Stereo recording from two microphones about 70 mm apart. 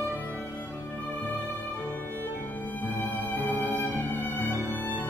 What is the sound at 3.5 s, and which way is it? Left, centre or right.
Music, right.